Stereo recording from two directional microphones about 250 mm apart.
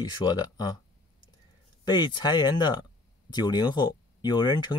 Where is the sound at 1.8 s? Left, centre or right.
Centre.